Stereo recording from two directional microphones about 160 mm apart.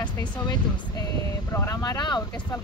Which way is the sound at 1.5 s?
20° left (ahead or behind).